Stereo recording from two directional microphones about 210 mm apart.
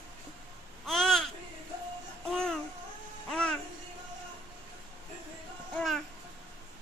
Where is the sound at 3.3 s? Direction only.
5° left (ahead or behind).